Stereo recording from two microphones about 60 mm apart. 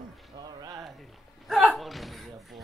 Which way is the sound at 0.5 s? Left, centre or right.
Right.